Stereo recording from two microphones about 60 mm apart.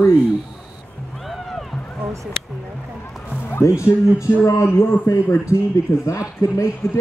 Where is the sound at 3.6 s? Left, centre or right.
Left.